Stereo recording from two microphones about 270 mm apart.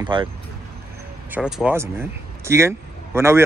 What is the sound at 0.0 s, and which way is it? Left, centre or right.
Speech, centre.